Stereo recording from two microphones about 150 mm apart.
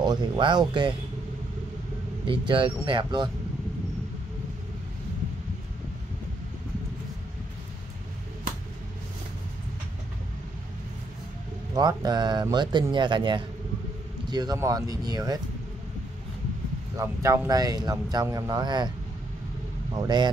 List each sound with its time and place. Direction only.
0.0 s speech: 30° right (ahead or behind)
2.2 s speech: 35° right (ahead or behind)
11.7 s speech: 30° right (ahead or behind)
16.9 s speech: 20° right (ahead or behind)
19.9 s speech: 30° right (ahead or behind)